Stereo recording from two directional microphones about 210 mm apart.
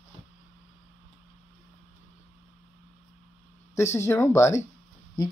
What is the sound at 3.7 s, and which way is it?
Speech, 10° left (ahead or behind).